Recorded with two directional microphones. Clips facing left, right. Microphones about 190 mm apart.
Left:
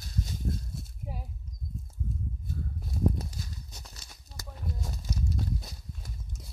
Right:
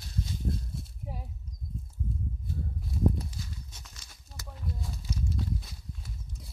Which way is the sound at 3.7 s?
35° left (ahead or behind).